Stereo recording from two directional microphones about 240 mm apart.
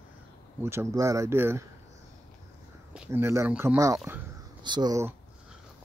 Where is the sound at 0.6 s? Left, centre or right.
Centre.